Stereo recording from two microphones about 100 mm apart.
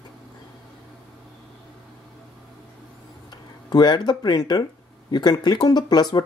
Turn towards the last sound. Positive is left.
turn(degrees=45)  # may be behind; listen again after turning